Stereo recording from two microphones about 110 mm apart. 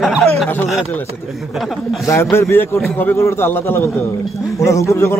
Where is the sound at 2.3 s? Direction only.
20° left (ahead or behind).